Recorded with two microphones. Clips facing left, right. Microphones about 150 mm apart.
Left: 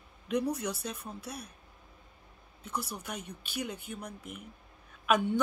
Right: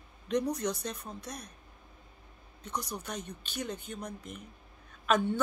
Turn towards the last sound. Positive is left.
turn(degrees=10)  # may be behind; listen again after turning